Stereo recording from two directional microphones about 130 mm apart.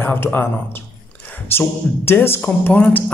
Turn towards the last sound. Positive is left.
turn(degrees=10)  # may be behind; listen again after turning